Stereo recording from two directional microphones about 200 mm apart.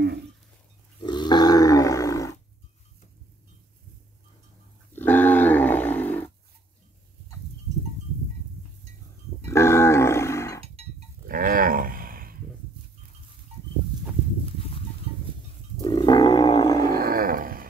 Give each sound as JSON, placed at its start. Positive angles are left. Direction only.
{"t": 1.0, "sound": "roar", "side_deg": 20}
{"t": 4.9, "sound": "wild animals", "side_deg": 10}
{"t": 9.4, "sound": "livestock", "side_deg": 15}
{"t": 11.2, "sound": "a sound", "side_deg": -45}
{"t": 15.8, "sound": "roaring cats", "side_deg": 20}
{"t": 16.9, "sound": "roar", "side_deg": -45}